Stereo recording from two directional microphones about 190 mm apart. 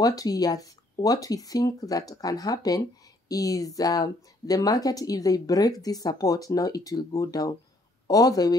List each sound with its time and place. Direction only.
0.0 s speech: 20° left (ahead or behind)